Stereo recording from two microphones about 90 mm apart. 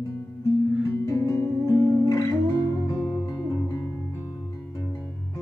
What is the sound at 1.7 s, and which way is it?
Music, 15° right (ahead or behind).